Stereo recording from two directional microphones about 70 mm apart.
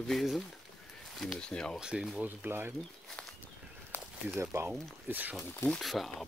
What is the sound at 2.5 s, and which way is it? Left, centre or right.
Speech, right.